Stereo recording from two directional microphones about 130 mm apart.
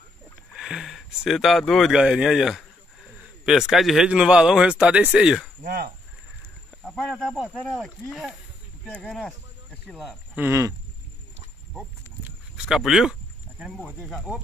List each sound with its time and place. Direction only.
0.6 s a man's voice: 5° right (ahead or behind)
6.8 s speech: 5° left (ahead or behind)
10.3 s speech: 20° right (ahead or behind)
12.3 s a sound: 5° right (ahead or behind)